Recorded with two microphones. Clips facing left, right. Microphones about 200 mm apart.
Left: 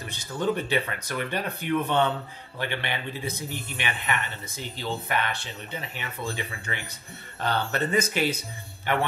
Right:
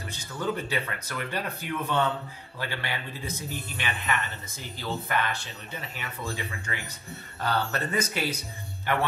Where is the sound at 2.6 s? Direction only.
20° left (ahead or behind).